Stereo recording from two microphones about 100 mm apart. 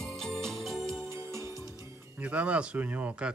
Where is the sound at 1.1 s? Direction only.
30° right (ahead or behind).